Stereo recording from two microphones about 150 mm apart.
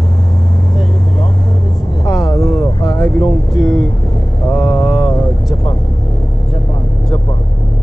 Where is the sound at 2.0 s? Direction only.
25° left (ahead or behind).